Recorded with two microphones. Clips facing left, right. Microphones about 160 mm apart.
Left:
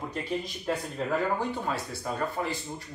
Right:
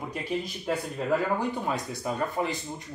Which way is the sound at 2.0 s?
15° right (ahead or behind).